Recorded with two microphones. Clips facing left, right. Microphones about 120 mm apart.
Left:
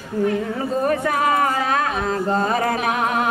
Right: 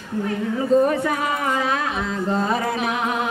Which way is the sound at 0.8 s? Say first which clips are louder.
Left 1 dB; 50° left (ahead or behind).